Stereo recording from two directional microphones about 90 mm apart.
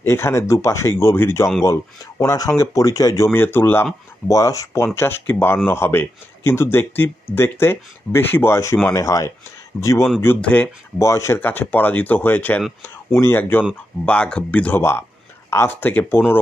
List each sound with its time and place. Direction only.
0.0 s speech: 30° left (ahead or behind)
2.2 s speech: 40° left (ahead or behind)
3.3 s speech: 25° left (ahead or behind)
4.3 s speech: 40° left (ahead or behind)
4.9 s speech: 25° left (ahead or behind)
10.4 s speech: 15° left (ahead or behind)
11.0 s speech: 30° left (ahead or behind)
11.4 s speech: 20° left (ahead or behind)
12.8 s speech: 30° left (ahead or behind)